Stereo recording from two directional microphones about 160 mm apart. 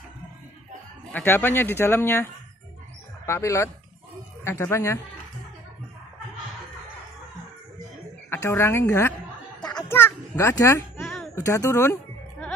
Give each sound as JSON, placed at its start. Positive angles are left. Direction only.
{"t": 1.1, "sound": "speech", "side_deg": 15}
{"t": 3.3, "sound": "speech", "side_deg": 15}
{"t": 8.3, "sound": "a woman's voice", "side_deg": 15}
{"t": 9.7, "sound": "children playing", "side_deg": 20}
{"t": 11.0, "sound": "a sound", "side_deg": 5}
{"t": 11.3, "sound": "speech", "side_deg": 20}